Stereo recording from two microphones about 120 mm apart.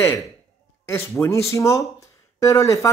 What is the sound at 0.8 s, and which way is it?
Speech, 20° left (ahead or behind).